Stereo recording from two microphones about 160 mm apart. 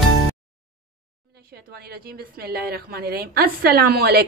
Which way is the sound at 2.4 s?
75° right (ahead or behind).